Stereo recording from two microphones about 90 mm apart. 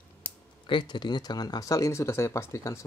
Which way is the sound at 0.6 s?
60° left (ahead or behind).